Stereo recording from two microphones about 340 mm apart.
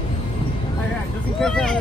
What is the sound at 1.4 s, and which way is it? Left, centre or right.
Speech, centre.